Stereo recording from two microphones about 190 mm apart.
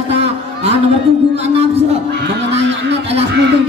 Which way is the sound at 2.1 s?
65° right (ahead or behind).